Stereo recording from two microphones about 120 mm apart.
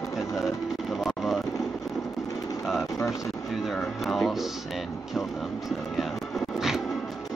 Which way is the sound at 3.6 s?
Centre (ahead or behind).